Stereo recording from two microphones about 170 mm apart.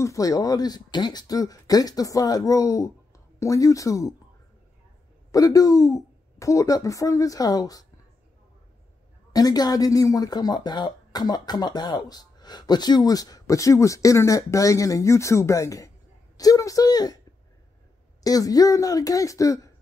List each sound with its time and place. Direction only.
0.0 s speech: 20° left (ahead or behind)
5.3 s speech: 20° left (ahead or behind)
9.3 s speech: 20° left (ahead or behind)
18.2 s speech: 20° left (ahead or behind)